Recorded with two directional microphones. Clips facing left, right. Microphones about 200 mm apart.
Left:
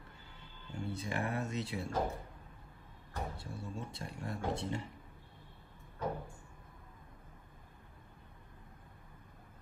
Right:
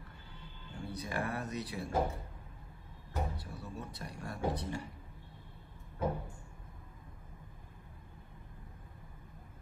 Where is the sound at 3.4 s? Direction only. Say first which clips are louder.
Left 1 dB; 25° left (ahead or behind).